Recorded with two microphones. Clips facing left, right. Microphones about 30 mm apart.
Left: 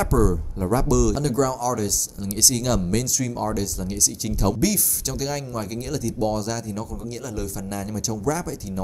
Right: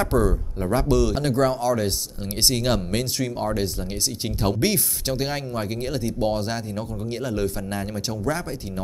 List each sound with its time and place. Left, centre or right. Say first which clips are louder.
0.0 s speech: left 1 dB; right